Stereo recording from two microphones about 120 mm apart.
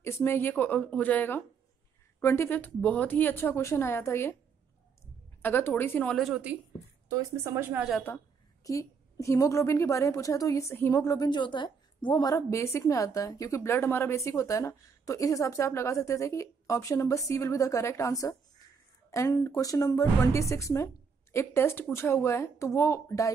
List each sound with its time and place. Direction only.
0.0 s a woman's voice: 20° left (ahead or behind)
5.4 s a woman's voice: 20° left (ahead or behind)
6.1 s a woman's voice: 5° right (ahead or behind)
7.1 s a woman's voice: 25° right (ahead or behind)
8.6 s a woman's voice: 25° left (ahead or behind)